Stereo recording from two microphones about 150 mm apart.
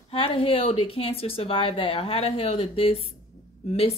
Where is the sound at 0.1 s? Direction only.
40° left (ahead or behind).